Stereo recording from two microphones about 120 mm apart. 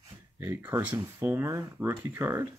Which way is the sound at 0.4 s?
15° right (ahead or behind).